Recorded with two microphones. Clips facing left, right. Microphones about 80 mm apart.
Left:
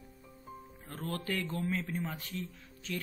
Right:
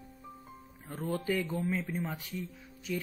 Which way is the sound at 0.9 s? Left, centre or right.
Centre.